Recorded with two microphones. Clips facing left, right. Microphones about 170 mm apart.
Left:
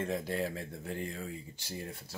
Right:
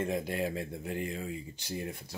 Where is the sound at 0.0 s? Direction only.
15° right (ahead or behind).